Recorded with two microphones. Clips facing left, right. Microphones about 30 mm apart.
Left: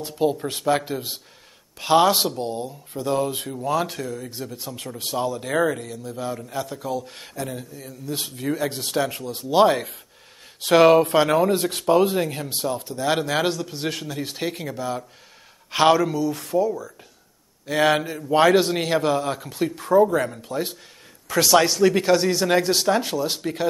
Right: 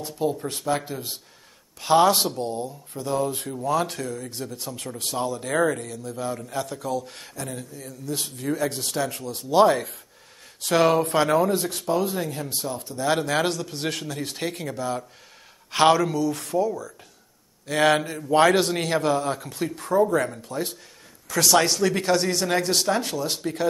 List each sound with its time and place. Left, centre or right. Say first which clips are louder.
0.0 s speech: left 4 dB; left
0.4 s a man's voice: left 4 dB; centre
2.3 s a man's voice: left 1 dB; centre
3.7 s a man's voice: left 1 dB; centre
11.7 s speech: left 6 dB; left
12.5 s a man's voice: left 4 dB; centre
23.4 s a man's voice: left 1 dB; centre